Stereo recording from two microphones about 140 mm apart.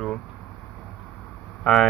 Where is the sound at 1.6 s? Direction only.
5° left (ahead or behind).